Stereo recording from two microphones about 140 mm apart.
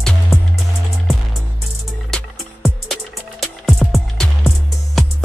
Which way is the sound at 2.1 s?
Centre (ahead or behind).